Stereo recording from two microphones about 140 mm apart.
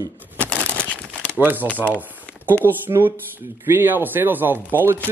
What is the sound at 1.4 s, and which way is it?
Speech, 15° right (ahead or behind).